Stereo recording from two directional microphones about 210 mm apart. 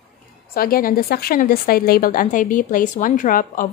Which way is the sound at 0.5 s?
45° left (ahead or behind).